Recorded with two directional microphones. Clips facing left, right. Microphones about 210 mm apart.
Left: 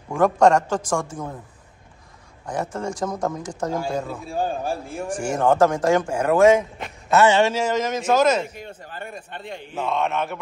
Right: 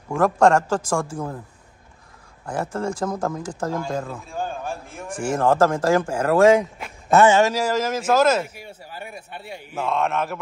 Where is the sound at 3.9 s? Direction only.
10° left (ahead or behind).